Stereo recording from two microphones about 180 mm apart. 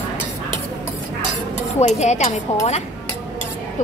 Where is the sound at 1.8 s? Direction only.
40° left (ahead or behind).